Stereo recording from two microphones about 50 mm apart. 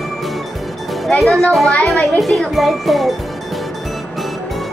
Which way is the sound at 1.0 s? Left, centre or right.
Centre.